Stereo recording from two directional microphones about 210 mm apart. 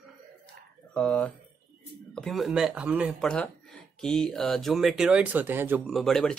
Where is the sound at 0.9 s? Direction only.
5° left (ahead or behind).